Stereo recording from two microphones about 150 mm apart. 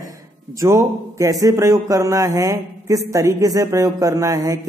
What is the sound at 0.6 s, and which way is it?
A man's voice, 20° right (ahead or behind).